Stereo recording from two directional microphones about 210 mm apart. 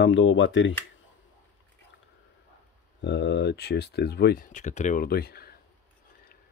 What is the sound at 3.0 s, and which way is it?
Speech, 55° left (ahead or behind).